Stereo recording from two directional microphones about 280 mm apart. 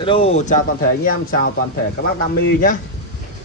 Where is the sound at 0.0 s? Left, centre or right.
Centre.